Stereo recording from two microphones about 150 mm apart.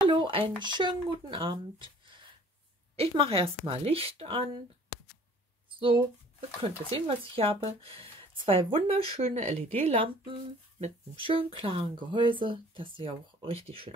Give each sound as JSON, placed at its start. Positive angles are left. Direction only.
{"t": 0.0, "sound": "a sound", "side_deg": -30}
{"t": 0.6, "sound": "speech", "side_deg": -30}
{"t": 5.8, "sound": "speech", "side_deg": -35}